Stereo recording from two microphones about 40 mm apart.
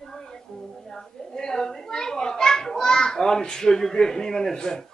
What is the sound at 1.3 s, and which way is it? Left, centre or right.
A child's voice, centre.